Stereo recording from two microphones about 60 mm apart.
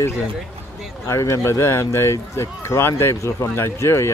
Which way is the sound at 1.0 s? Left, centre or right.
Left.